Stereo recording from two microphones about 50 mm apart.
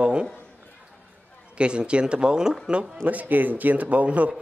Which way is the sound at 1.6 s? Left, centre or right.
Right.